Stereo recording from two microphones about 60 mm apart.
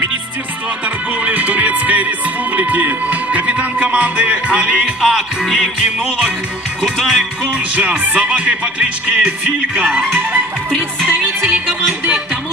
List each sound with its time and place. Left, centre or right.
0.8 s music: right
5.0 s music: centre
6.8 s music: centre
7.5 s music: right
10.7 s music: centre
11.4 s music: right